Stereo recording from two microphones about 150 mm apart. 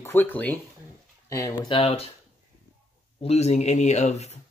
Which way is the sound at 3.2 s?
45° left (ahead or behind).